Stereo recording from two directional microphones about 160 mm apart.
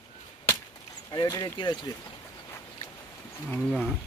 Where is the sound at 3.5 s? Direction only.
Centre (ahead or behind).